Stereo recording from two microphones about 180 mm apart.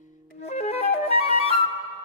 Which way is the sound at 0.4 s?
40° left (ahead or behind).